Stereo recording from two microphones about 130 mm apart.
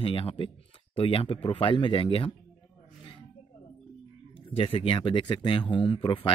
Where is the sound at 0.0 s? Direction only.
45° left (ahead or behind).